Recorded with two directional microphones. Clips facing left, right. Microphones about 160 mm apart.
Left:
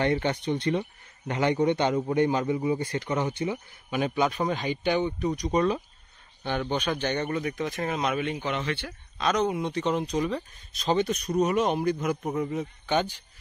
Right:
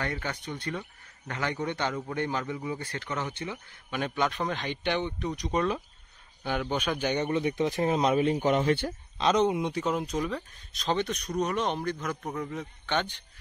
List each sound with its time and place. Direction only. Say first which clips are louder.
0.0 s speech: left 8 dB; 25° left (ahead or behind); by 8.9 s 45° right (ahead or behind)
9.2 s speech: right 1 dB; 25° right (ahead or behind); by 13.1 s 10° left (ahead or behind)